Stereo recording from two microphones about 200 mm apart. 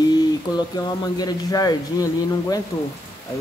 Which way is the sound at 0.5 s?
20° left (ahead or behind).